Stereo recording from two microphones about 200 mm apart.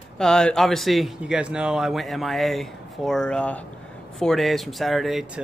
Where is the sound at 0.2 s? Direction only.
5° left (ahead or behind).